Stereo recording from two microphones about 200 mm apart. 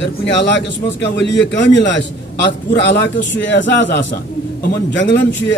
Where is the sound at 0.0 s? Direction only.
60° left (ahead or behind).